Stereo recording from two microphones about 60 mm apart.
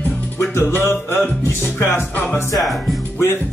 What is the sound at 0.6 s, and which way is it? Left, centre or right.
Speech, left.